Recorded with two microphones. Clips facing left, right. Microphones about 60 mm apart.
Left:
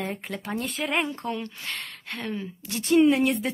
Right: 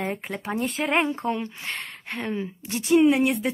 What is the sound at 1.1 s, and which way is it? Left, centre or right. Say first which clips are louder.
Speech: right 4 dB; right.